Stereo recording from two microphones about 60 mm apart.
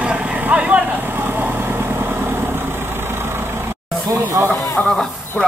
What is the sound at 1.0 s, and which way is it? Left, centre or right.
Vehicle, right.